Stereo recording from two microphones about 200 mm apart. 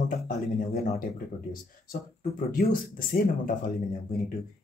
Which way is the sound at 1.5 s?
45° left (ahead or behind).